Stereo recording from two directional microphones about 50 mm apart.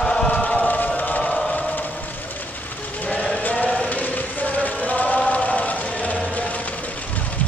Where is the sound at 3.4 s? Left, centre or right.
Left.